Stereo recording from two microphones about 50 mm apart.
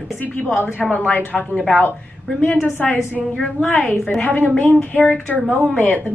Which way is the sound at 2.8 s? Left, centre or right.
Left.